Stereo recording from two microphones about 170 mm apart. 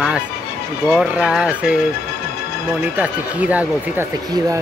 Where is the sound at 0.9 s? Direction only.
5° right (ahead or behind).